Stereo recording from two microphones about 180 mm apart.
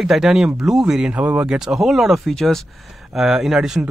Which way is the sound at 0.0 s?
Centre (ahead or behind).